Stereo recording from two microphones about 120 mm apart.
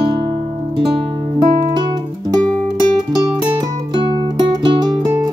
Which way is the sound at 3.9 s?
40° right (ahead or behind).